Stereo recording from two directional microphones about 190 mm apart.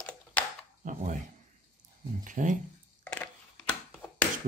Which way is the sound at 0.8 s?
40° right (ahead or behind).